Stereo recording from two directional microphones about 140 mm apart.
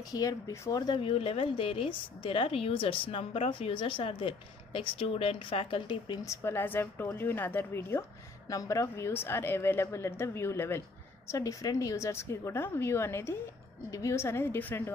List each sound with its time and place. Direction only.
0.1 s speech: 25° left (ahead or behind)
6.2 s a woman's voice: 20° left (ahead or behind)